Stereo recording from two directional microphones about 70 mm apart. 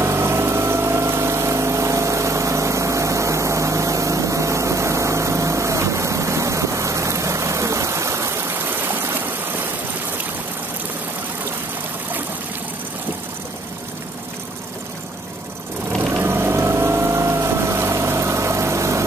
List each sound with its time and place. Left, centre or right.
0.0 s vehicle: right
16.1 s vehicle: right